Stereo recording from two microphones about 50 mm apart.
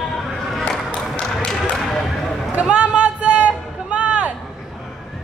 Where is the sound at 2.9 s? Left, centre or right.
Right.